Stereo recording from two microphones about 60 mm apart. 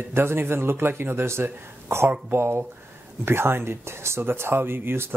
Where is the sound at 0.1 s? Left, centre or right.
Right.